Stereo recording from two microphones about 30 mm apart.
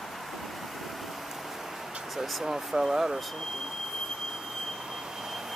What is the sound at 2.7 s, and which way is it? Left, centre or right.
Speech, centre.